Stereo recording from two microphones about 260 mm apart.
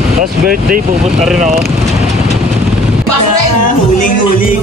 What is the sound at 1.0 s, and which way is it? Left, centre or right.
Speech, centre.